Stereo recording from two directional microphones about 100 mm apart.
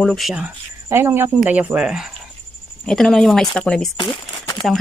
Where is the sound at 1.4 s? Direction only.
15° right (ahead or behind).